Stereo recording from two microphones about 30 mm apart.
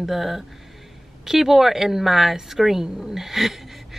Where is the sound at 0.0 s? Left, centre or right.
Centre.